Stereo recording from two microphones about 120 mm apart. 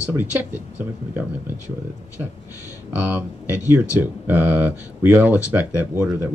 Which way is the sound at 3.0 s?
15° right (ahead or behind).